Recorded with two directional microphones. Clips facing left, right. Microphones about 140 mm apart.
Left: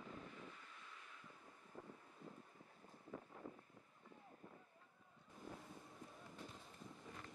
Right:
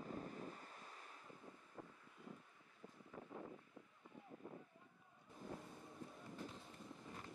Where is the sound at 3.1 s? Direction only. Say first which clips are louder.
Left 2 dB; 30° left (ahead or behind).